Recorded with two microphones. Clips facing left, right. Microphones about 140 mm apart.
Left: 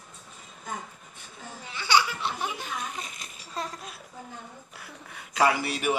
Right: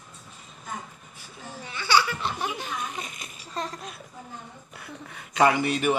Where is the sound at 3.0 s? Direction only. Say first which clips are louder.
Right 2 dB; centre (ahead or behind).